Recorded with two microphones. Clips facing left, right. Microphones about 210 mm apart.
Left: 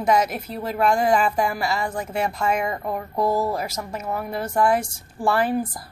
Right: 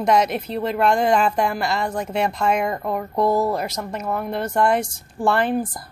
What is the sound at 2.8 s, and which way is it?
Speech, 25° right (ahead or behind).